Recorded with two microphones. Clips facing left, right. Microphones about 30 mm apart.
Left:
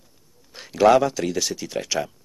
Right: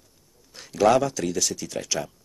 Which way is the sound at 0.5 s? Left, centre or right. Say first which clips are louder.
Left 3 dB; left.